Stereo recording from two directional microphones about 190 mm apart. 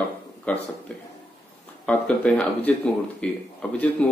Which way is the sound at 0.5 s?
10° left (ahead or behind).